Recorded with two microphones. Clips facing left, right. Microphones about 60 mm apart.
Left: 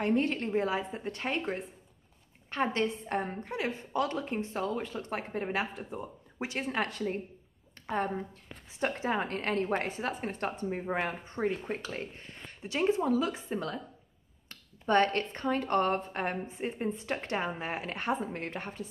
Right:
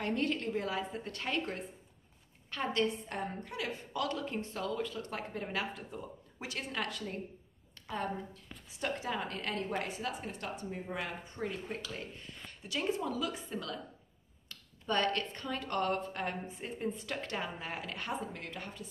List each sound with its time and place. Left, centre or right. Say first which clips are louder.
0.0 s a woman's voice: left 5 dB; left